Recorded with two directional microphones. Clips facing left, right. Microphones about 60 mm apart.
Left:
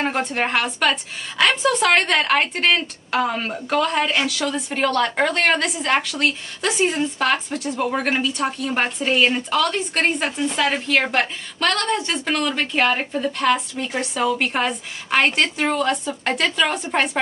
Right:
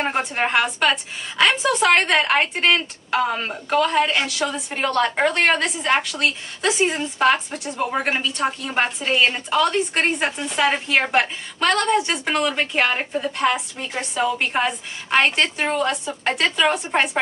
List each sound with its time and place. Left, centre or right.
0.2 s a woman's voice: centre
10.6 s a woman's voice: centre
15.9 s a woman's voice: centre